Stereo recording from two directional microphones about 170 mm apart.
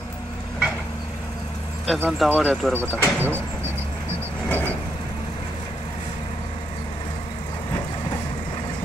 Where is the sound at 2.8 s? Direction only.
10° left (ahead or behind).